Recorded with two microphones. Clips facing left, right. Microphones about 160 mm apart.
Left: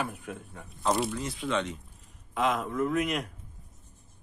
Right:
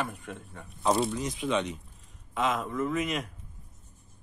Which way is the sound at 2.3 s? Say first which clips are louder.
Left 1 dB; centre (ahead or behind).